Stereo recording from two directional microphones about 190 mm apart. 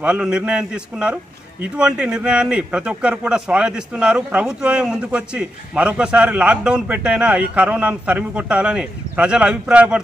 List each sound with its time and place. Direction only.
0.0 s a man's voice: 5° right (ahead or behind)